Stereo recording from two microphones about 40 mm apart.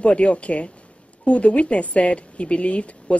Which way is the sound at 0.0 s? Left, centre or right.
Left.